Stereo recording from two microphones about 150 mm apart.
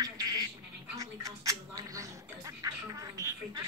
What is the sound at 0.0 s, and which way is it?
Duck, 25° right (ahead or behind).